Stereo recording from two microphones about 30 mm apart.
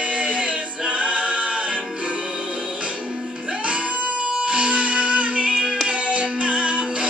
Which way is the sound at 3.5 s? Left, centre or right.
Right.